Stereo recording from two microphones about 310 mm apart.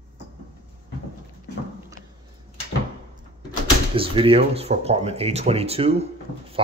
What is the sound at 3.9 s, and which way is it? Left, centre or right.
Speech, centre.